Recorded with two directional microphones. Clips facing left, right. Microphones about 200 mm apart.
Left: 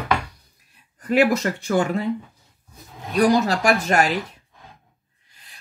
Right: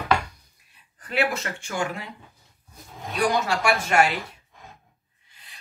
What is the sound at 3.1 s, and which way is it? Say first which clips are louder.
Speech: left 6 dB; 40° left (ahead or behind).